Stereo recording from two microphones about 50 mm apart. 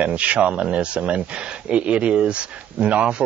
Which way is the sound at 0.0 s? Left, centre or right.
Right.